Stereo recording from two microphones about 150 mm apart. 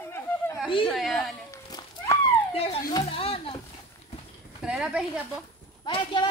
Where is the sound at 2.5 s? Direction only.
40° left (ahead or behind).